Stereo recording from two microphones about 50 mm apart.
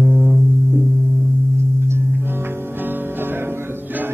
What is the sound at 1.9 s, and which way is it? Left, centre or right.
Music, right.